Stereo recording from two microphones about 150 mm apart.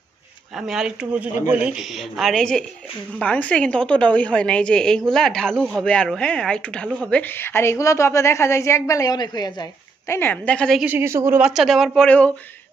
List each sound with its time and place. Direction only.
0.6 s a woman's voice: 5° right (ahead or behind); by 10.1 s 25° left (ahead or behind)
10.1 s a woman's voice: 10° left (ahead or behind)
10.8 s a woman's voice: 15° right (ahead or behind)
11.5 s speech: centre (ahead or behind)